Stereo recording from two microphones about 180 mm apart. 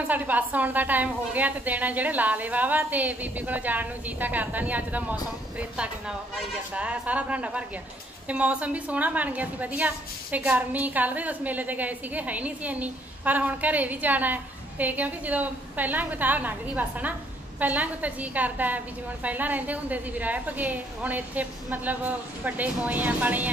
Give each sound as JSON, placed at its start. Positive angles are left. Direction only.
{"t": 0.1, "sound": "a woman's voice", "side_deg": -10}